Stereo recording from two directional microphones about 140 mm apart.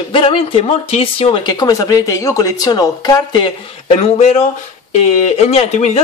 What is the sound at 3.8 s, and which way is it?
Speech, 50° left (ahead or behind).